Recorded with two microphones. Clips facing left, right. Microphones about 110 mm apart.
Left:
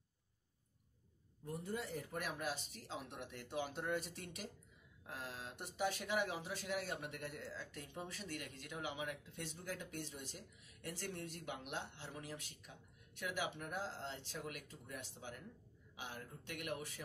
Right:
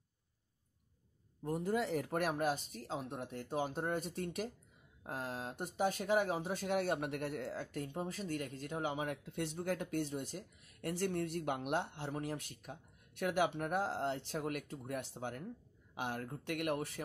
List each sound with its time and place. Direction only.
1.4 s speech: 90° right; by 17.0 s 60° right (ahead or behind)